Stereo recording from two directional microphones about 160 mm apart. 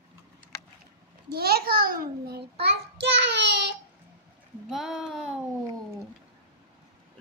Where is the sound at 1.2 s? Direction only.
75° right (ahead or behind).